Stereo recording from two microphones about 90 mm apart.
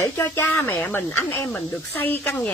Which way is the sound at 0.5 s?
25° left (ahead or behind).